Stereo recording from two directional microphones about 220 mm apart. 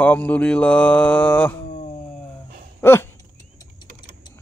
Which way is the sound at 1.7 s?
45° left (ahead or behind).